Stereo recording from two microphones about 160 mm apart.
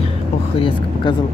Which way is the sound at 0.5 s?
35° left (ahead or behind).